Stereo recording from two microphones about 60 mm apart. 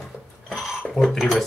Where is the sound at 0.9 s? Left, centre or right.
Centre.